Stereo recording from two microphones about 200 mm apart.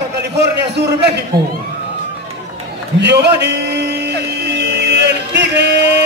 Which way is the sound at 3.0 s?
55° right (ahead or behind).